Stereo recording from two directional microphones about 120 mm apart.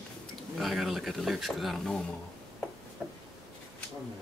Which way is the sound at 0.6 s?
Centre (ahead or behind).